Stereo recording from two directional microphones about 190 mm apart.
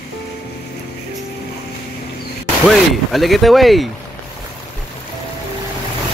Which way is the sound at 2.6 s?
Centre (ahead or behind).